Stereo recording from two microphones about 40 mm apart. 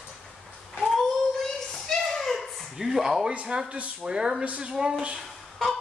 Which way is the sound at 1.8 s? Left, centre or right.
Centre.